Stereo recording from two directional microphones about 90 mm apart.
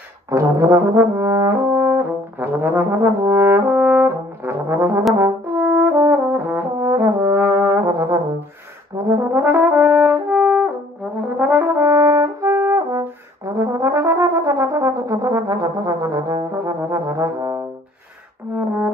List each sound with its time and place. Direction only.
0.3 s brass instrument: 35° right (ahead or behind); by 10.7 s 10° right (ahead or behind)
11.3 s brass instrument: 25° right (ahead or behind)